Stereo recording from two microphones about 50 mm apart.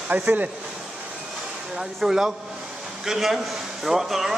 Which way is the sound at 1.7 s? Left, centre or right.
Centre.